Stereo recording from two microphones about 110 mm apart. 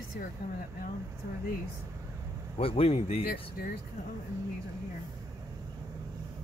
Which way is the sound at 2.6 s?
60° left (ahead or behind).